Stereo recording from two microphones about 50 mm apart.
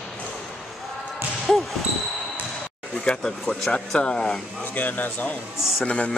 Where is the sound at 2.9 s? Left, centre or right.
Centre.